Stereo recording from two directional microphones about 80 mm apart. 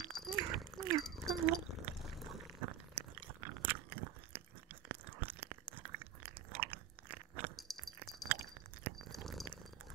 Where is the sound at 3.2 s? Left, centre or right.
Right.